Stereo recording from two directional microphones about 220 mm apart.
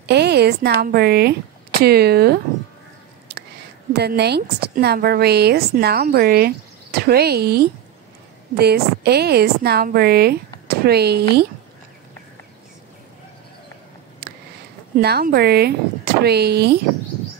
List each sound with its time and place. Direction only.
0.0 s a woman's voice: 50° right (ahead or behind)
3.9 s a woman's voice: 50° right (ahead or behind)
14.2 s a sound: 45° right (ahead or behind)
15.0 s a woman's voice: 45° right (ahead or behind)